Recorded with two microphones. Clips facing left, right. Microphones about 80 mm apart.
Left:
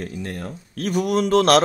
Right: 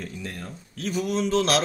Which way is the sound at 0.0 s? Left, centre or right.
Left.